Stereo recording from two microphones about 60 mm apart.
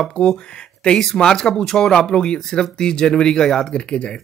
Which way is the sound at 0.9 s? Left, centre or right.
Centre.